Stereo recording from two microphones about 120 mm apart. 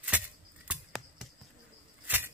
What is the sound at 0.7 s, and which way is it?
Scissors, centre (ahead or behind).